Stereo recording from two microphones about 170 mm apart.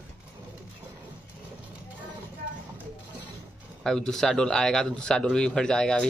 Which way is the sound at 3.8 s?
5° left (ahead or behind).